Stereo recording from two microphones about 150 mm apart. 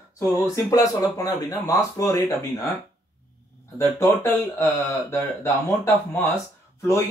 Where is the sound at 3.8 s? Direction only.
20° left (ahead or behind).